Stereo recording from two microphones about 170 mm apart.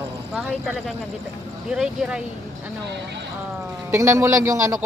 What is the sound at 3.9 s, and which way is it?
Speech, 15° right (ahead or behind).